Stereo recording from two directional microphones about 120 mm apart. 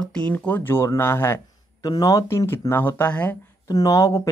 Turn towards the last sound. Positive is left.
turn(degrees=30)  # may be behind; listen again after turning